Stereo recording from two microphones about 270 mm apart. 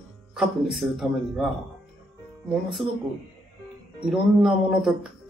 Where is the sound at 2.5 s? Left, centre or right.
Centre.